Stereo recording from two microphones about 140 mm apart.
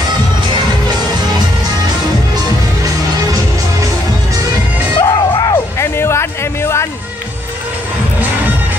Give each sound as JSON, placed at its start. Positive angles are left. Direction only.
{"t": 4.9, "sound": "music", "side_deg": 30}